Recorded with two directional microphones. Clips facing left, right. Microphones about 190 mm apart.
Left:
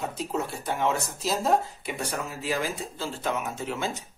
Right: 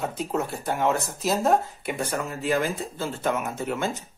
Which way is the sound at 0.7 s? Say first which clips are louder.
Right 3 dB; 50° right (ahead or behind).